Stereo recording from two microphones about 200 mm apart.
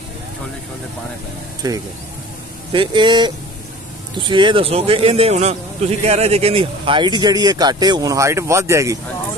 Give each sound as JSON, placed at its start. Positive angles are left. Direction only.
{"t": 1.6, "sound": "a man's voice", "side_deg": -20}